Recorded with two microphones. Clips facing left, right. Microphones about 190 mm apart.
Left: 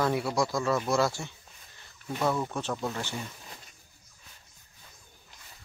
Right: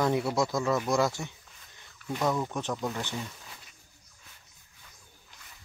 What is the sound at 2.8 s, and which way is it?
Speech, 15° right (ahead or behind).